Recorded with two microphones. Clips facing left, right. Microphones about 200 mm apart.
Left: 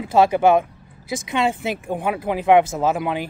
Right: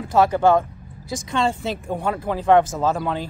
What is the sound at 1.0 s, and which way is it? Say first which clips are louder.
Speech: left 1 dB; 10° left (ahead or behind).